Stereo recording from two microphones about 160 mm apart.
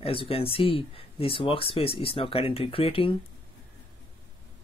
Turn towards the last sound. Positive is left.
turn(degrees=35)  # may be behind; listen again after turning